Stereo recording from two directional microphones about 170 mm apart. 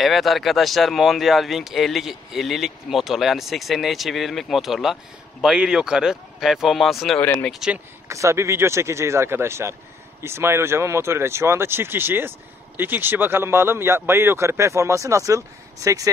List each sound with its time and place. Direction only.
0.0 s speech: centre (ahead or behind)
8.1 s speech: 15° right (ahead or behind)